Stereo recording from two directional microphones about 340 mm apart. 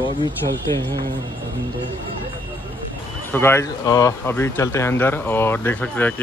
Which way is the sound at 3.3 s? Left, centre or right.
Centre.